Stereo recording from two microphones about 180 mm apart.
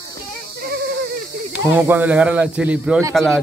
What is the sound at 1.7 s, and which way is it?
Speech, 10° right (ahead or behind).